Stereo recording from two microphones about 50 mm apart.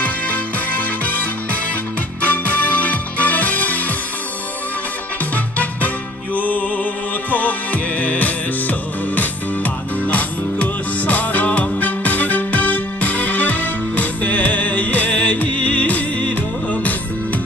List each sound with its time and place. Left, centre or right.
0.0 s music: left
5.3 s music: left